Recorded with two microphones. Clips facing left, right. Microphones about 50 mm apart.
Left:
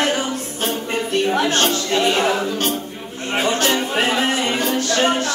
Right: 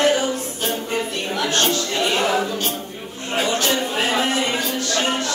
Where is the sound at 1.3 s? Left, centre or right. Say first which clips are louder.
Even; left.